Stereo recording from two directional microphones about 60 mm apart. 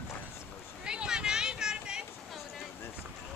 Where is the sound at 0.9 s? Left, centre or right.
Centre.